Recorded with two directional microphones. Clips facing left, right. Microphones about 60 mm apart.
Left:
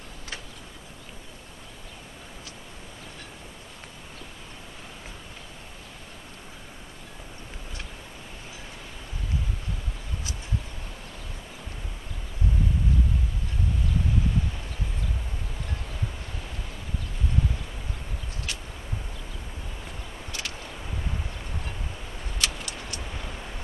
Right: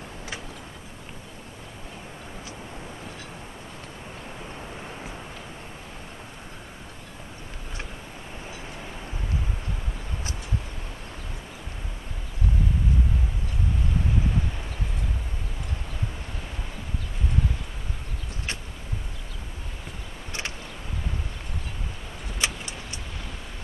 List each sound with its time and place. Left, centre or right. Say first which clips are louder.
22.4 s vehicle: right 2 dB; right